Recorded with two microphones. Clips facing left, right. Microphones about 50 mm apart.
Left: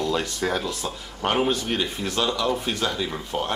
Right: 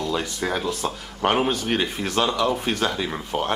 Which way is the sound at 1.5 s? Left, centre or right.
Right.